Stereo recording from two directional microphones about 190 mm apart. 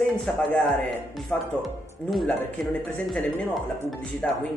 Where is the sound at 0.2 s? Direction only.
Centre (ahead or behind).